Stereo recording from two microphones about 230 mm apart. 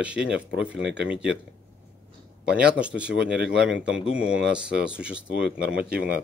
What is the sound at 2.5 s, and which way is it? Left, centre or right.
Speech, centre.